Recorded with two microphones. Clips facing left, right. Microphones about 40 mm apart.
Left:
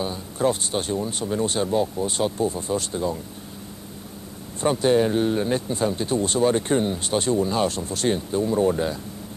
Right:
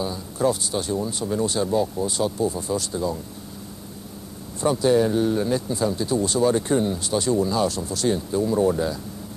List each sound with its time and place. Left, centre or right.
0.0 s speech: left
4.6 s speech: left